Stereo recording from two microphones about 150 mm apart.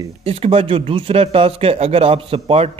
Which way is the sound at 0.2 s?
40° right (ahead or behind).